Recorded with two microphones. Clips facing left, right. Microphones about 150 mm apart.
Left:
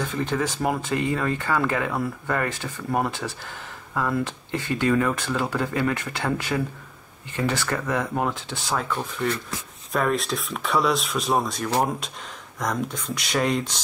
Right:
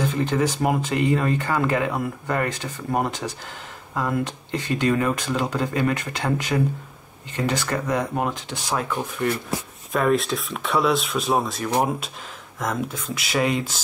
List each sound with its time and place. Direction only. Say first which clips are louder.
0.2 s speech: right 2 dB; 15° right (ahead or behind)
4.6 s speech: even; 15° right (ahead or behind)
9.9 s speech: right 3 dB; centre (ahead or behind)